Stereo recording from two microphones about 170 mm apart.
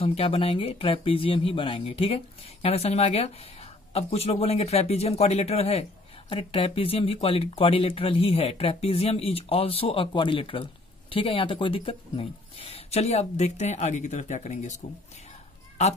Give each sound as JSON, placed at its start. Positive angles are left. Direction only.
{"t": 0.0, "sound": "speech", "side_deg": 35}